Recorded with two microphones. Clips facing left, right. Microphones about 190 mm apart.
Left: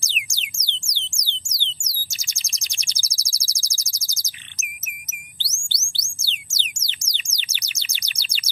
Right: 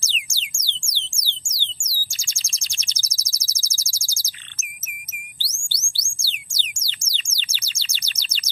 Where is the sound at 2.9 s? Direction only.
10° left (ahead or behind).